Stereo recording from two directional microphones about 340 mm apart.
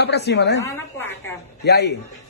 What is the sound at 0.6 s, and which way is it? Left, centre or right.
Speech, centre.